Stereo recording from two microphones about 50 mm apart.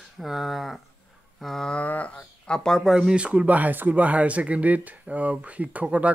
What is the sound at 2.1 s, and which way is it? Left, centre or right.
Speech, centre.